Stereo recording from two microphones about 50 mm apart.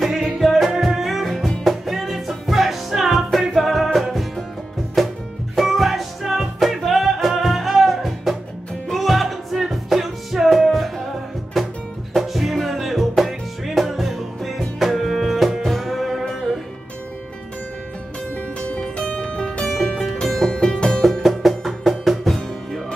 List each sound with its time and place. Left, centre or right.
0.4 s music: centre
18.3 s music: left; by 22.8 s centre